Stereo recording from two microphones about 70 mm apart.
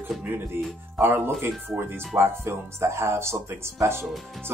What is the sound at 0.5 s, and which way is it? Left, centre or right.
Speech, right.